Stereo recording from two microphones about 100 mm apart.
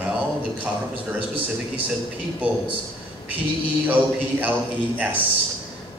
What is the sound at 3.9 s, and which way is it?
Speech, 15° right (ahead or behind).